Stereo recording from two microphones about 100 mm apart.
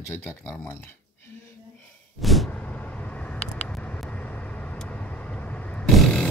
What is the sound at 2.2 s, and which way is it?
Vehicle, centre (ahead or behind).